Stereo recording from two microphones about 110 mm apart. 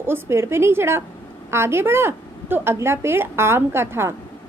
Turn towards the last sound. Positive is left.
turn(degrees=-25)  # may be behind; listen again after turning